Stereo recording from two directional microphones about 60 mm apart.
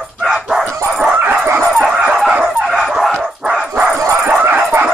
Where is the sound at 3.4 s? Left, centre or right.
Centre.